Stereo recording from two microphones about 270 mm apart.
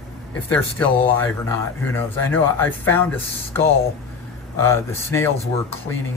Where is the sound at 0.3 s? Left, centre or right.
Centre.